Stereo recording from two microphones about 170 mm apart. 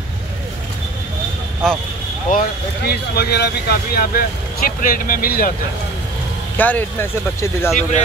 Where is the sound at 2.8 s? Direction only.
70° left (ahead or behind).